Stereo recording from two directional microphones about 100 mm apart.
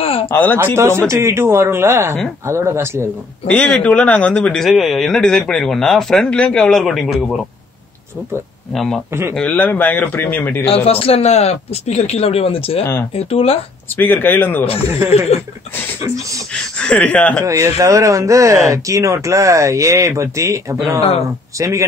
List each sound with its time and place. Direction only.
0.0 s a sound: 70° left (ahead or behind)
0.3 s a man's voice: 20° left (ahead or behind)
0.7 s speech: 25° right (ahead or behind)
3.4 s a man's voice: 10° left (ahead or behind)
8.7 s a man's voice: 5° left (ahead or behind); by 10.6 s 20° left (ahead or behind)
10.6 s speech: 75° left (ahead or behind)
13.9 s speech: 20° left (ahead or behind)
15.0 s speech: 90° left
16.7 s a man's voice: 10° left (ahead or behind)
17.5 s speech: 30° right (ahead or behind)